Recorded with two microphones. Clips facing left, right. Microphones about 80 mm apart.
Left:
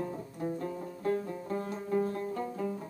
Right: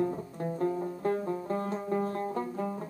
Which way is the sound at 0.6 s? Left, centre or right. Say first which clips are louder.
Right 7 dB; right.